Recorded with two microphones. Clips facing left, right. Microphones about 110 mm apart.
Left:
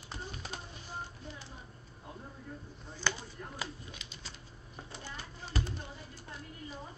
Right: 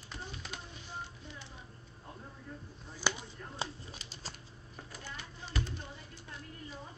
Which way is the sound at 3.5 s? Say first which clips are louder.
Right 5 dB; 35° right (ahead or behind).